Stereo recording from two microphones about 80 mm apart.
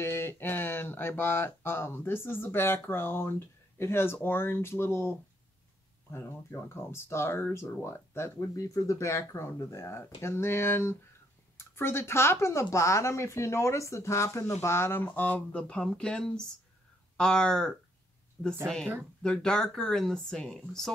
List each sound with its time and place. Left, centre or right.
0.0 s speech: left
6.1 s speech: left; by 20.9 s centre